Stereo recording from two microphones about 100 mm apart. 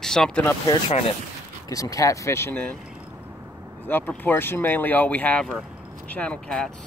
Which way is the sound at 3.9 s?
20° left (ahead or behind).